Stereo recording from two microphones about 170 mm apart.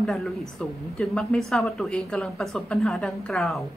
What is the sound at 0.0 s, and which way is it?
A woman's voice, centre (ahead or behind).